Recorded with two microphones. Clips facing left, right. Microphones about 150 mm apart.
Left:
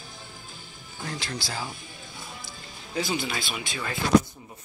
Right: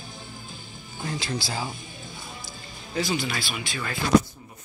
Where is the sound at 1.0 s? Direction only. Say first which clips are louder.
Right 4 dB; 10° right (ahead or behind).